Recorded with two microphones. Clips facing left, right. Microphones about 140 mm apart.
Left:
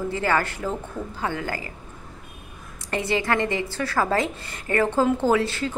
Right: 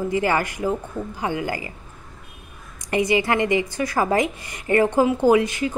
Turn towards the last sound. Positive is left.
turn(degrees=-15)  # may be behind; listen again after turning